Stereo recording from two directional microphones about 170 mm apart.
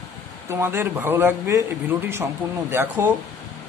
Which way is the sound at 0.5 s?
15° right (ahead or behind).